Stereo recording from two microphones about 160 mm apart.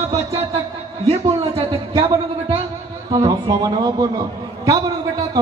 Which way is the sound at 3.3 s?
25° right (ahead or behind).